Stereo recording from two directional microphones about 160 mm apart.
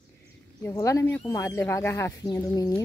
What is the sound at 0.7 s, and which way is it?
Speech, 20° left (ahead or behind).